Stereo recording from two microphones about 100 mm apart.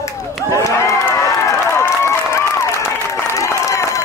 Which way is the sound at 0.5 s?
30° left (ahead or behind).